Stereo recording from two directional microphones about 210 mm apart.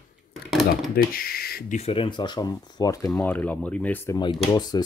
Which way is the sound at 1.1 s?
45° left (ahead or behind).